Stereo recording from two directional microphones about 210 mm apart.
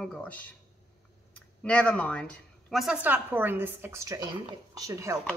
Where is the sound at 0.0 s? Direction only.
5° left (ahead or behind).